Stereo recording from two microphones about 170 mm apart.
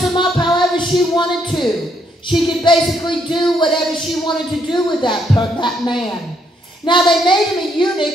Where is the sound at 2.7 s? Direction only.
25° left (ahead or behind).